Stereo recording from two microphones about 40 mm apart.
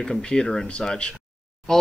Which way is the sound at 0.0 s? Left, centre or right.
Centre.